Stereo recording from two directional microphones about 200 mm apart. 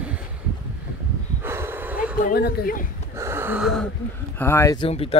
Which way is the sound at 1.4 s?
10° right (ahead or behind).